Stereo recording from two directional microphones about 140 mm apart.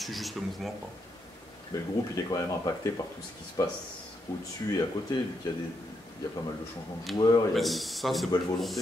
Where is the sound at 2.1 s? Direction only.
25° left (ahead or behind).